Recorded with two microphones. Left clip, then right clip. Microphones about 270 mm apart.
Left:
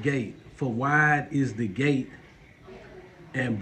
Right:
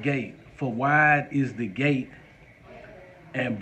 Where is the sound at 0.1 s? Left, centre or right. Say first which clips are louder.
Right 1 dB; centre.